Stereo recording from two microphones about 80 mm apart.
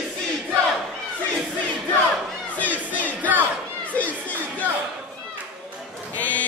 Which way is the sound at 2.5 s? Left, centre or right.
Centre.